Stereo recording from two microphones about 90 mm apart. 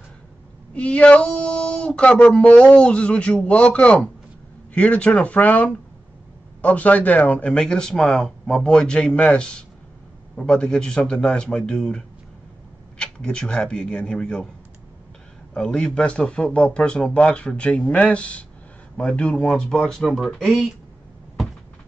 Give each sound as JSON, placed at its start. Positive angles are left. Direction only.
{"t": 0.7, "sound": "speech", "side_deg": 15}
{"t": 15.5, "sound": "speech", "side_deg": 10}